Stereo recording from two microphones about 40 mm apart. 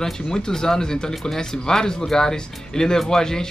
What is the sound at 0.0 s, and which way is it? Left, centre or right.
Speech, centre.